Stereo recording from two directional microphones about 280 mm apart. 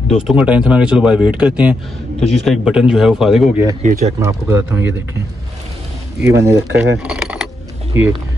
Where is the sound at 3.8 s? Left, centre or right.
Right.